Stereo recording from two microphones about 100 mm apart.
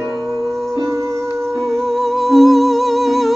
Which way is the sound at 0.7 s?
30° right (ahead or behind).